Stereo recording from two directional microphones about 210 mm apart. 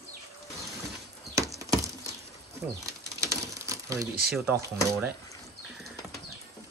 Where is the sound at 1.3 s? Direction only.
15° right (ahead or behind).